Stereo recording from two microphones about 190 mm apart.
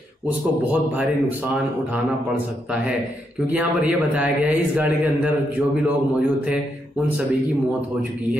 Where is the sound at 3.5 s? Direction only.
10° right (ahead or behind).